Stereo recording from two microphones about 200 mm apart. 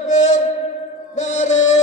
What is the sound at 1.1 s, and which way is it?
Music, 35° left (ahead or behind).